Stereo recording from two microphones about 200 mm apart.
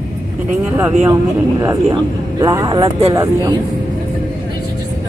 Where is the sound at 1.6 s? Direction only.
15° right (ahead or behind).